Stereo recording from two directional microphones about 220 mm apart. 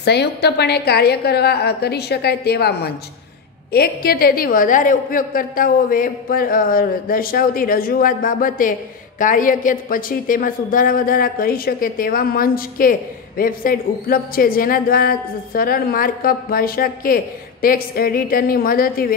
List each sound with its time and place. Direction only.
0.0 s a woman's voice: 50° left (ahead or behind)